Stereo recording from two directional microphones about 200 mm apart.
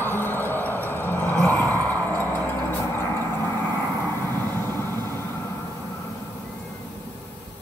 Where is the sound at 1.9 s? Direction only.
10° left (ahead or behind).